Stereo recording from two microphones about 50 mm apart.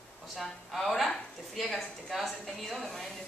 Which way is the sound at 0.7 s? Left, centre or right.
Centre.